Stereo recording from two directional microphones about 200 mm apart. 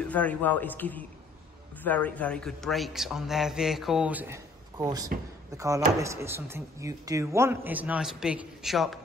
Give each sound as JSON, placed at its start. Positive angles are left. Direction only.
{"t": 0.1, "sound": "a man's voice", "side_deg": 10}
{"t": 5.1, "sound": "speech", "side_deg": -45}
{"t": 5.6, "sound": "speech", "side_deg": -15}